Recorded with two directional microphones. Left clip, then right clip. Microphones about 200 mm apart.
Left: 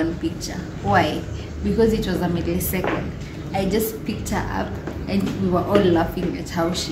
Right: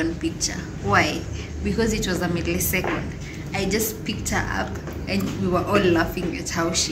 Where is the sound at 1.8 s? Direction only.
15° left (ahead or behind).